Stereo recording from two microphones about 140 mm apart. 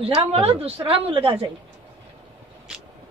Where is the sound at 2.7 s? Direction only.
5° right (ahead or behind).